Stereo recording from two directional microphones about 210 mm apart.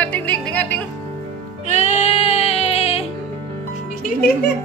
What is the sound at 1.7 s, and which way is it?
Music, 30° left (ahead or behind).